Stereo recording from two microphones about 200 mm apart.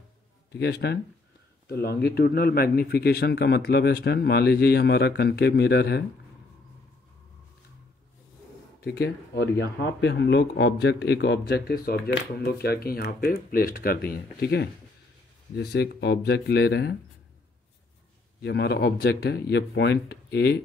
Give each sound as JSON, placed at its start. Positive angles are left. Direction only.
{"t": 0.5, "sound": "a man's voice", "side_deg": 55}
{"t": 8.8, "sound": "a man's voice", "side_deg": 55}
{"t": 18.4, "sound": "speech", "side_deg": 55}